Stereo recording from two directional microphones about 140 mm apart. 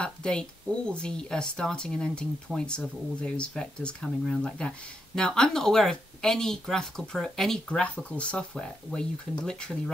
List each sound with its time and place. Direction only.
0.0 s speech: 5° left (ahead or behind)